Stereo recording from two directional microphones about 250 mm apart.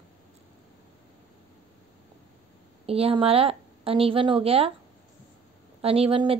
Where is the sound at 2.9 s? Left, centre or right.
Right.